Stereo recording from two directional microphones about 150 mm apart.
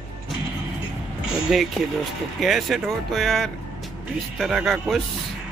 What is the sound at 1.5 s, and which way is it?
Speech, centre (ahead or behind).